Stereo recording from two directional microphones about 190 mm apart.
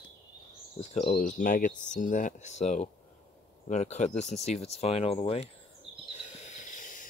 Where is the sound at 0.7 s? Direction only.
40° left (ahead or behind).